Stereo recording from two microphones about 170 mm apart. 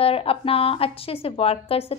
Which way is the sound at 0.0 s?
35° left (ahead or behind).